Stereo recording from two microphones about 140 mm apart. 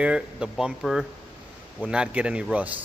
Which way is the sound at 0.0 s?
5° right (ahead or behind).